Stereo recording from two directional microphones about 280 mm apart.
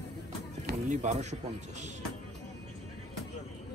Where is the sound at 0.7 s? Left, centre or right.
Right.